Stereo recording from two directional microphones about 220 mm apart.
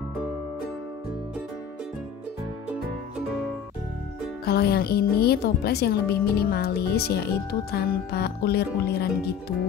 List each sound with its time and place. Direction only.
4.5 s speech: 45° left (ahead or behind)